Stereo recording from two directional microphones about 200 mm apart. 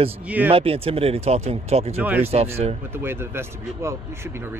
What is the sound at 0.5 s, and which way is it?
Speech, 30° right (ahead or behind).